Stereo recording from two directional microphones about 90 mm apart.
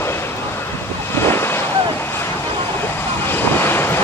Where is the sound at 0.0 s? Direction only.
30° left (ahead or behind).